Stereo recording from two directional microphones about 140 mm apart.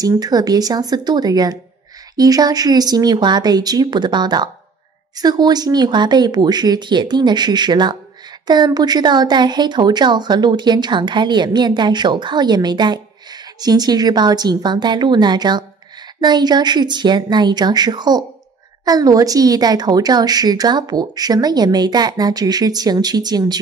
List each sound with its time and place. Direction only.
0.0 s a woman's voice: 30° right (ahead or behind)